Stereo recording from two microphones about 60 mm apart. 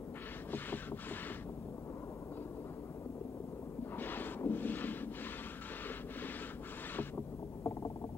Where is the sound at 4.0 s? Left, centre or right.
Left.